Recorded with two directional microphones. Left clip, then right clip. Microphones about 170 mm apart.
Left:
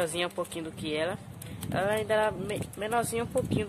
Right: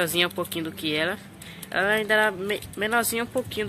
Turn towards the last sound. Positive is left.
turn(degrees=5)  # may be behind; listen again after turning